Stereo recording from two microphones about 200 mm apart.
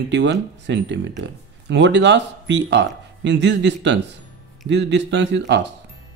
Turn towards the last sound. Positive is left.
turn(degrees=-60)  # may be behind; listen again after turning